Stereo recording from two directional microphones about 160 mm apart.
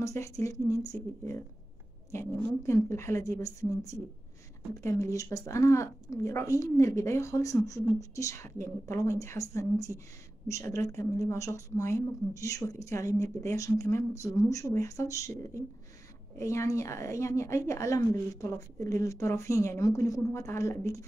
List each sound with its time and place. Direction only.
0.0 s a woman's voice: 20° left (ahead or behind)